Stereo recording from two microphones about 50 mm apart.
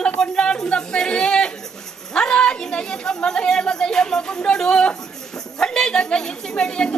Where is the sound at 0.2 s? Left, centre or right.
Centre.